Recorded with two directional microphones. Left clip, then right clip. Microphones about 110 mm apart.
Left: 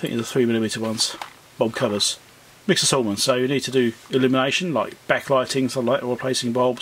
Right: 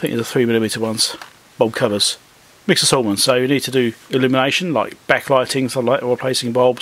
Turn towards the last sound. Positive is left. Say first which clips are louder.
# right 5 dB
turn(degrees=-35)  # may be behind; listen again after turning